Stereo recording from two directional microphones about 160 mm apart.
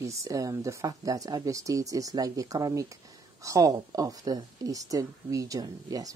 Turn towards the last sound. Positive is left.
turn(degrees=-20)  # may be behind; listen again after turning